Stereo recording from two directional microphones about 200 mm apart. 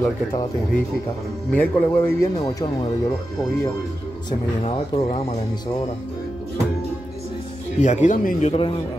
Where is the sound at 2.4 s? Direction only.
20° left (ahead or behind).